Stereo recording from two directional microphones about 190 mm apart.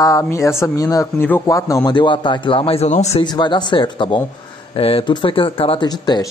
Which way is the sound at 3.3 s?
20° left (ahead or behind).